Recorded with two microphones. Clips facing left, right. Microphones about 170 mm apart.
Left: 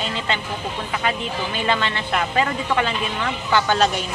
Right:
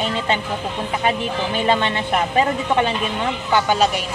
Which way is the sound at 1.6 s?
20° right (ahead or behind).